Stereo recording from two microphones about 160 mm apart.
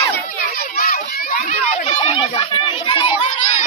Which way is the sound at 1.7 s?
35° left (ahead or behind).